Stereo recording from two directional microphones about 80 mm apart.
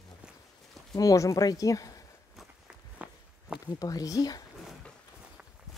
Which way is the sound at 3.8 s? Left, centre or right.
Left.